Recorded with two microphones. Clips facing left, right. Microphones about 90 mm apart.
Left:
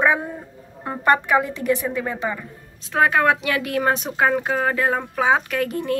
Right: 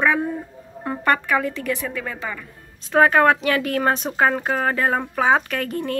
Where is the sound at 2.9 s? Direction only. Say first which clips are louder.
Right 3 dB; centre (ahead or behind).